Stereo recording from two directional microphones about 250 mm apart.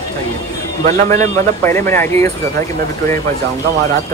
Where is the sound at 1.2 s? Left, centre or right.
Centre.